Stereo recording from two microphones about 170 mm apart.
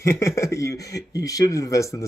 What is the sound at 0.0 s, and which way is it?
Speech, 15° left (ahead or behind).